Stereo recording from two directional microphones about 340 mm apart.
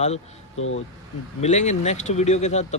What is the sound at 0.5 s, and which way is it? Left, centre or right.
Speech, left.